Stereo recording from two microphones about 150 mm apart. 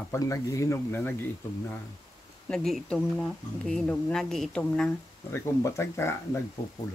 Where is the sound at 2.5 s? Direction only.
Centre (ahead or behind).